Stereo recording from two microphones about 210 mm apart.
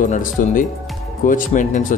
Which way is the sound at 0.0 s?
40° left (ahead or behind).